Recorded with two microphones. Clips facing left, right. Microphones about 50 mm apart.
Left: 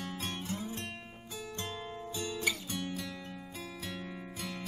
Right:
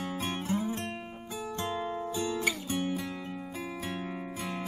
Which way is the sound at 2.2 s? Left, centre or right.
Centre.